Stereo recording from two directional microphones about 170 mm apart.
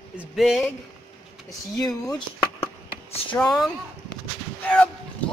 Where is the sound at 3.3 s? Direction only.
5° left (ahead or behind).